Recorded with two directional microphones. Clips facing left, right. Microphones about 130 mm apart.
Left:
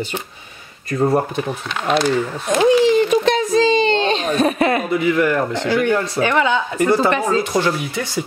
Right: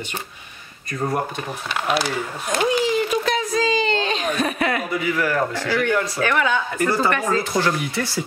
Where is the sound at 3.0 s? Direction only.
25° left (ahead or behind).